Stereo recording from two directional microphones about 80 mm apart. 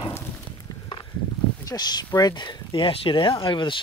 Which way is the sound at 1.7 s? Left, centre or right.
Left.